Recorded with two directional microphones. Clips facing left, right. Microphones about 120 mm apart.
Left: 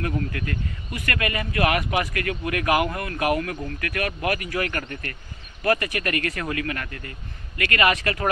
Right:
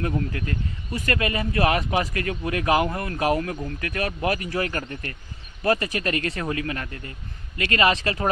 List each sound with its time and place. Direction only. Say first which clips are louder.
0.3 s speech: even; 25° right (ahead or behind)